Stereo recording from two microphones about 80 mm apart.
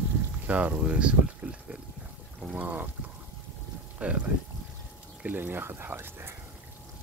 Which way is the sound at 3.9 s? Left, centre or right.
Centre.